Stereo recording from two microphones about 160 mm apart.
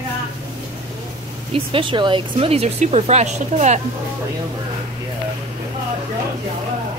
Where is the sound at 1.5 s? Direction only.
35° right (ahead or behind).